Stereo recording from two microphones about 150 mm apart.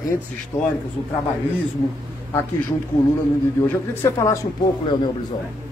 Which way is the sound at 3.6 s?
15° left (ahead or behind).